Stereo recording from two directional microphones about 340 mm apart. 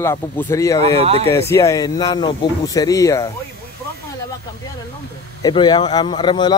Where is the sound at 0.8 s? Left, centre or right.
Centre.